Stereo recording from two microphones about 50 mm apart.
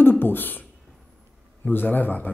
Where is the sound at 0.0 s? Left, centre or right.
Left.